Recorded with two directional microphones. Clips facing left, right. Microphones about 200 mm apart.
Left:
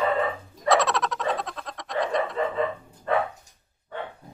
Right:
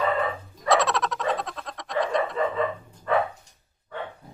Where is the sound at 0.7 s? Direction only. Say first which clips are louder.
Even; centre (ahead or behind).